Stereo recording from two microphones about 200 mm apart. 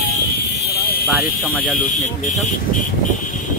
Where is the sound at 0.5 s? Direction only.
50° left (ahead or behind).